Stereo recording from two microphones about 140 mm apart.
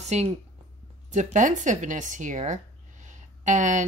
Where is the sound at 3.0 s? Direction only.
60° right (ahead or behind).